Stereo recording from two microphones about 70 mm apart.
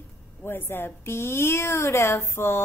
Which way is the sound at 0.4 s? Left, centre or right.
Left.